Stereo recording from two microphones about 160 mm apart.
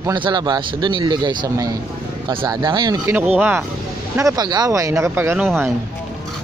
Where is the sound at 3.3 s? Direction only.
10° right (ahead or behind).